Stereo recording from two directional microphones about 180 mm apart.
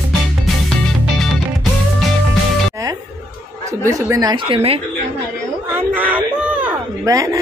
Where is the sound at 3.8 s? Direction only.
20° right (ahead or behind).